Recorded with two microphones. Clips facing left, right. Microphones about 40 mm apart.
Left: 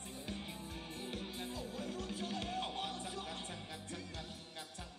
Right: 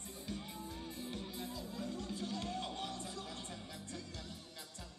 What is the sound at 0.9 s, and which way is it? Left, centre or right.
Music, left.